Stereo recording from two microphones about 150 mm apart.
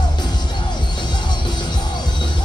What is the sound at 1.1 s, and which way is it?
Music, 30° left (ahead or behind).